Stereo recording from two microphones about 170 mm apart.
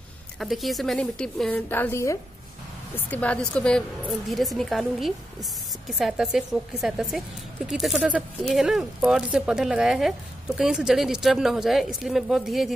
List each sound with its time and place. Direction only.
0.4 s a woman's voice: centre (ahead or behind)